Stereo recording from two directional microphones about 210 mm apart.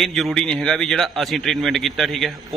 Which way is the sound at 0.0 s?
Centre (ahead or behind).